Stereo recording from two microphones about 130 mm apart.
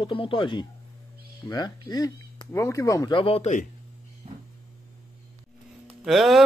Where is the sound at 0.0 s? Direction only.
40° left (ahead or behind); by 3.1 s 25° left (ahead or behind).